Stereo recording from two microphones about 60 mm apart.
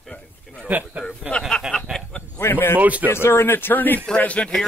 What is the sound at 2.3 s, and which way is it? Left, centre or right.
Speech, left.